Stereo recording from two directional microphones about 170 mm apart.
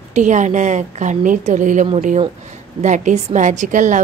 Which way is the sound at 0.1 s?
45° right (ahead or behind).